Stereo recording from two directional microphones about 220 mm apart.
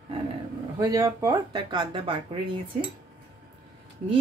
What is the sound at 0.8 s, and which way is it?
Speech, 15° right (ahead or behind).